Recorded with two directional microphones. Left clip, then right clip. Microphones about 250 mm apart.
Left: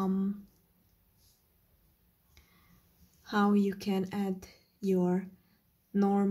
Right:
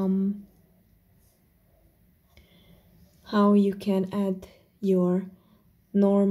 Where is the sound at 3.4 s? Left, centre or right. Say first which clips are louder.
Right 7 dB; left.